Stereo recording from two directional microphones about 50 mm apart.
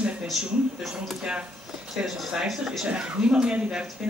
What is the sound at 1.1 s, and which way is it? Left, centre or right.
Speech, centre.